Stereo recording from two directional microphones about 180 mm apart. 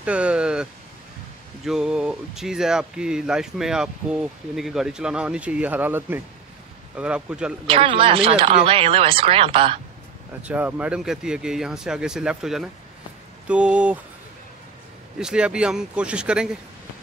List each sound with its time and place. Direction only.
0.0 s speech: 5° right (ahead or behind)
7.6 s speech: 30° right (ahead or behind)
10.4 s speech: 10° right (ahead or behind)
15.1 s speech: 5° right (ahead or behind)